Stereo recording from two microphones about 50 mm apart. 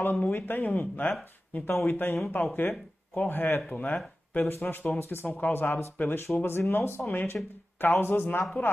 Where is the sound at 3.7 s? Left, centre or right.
Left.